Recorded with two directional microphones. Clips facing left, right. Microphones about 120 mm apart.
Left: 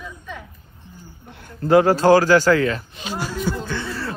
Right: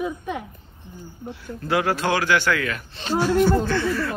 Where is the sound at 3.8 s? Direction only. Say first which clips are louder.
Right 5 dB; 30° left (ahead or behind).